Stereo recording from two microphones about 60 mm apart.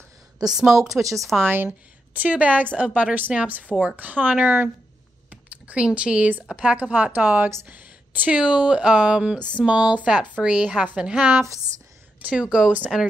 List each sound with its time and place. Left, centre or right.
0.5 s a woman's voice: centre
1.4 s speech: right
2.1 s speech: right
7.6 s a sound: right
8.4 s speech: centre